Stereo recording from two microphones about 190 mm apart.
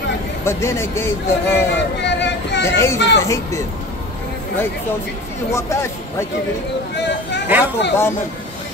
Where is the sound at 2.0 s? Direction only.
65° left (ahead or behind).